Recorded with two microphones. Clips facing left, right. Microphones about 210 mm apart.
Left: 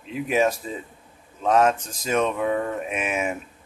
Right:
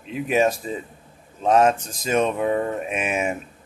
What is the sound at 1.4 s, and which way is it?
Speech, 30° right (ahead or behind).